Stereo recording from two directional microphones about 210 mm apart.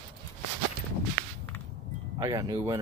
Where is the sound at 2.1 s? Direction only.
20° right (ahead or behind).